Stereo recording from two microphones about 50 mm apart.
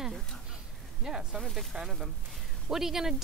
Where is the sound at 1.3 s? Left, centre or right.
Centre.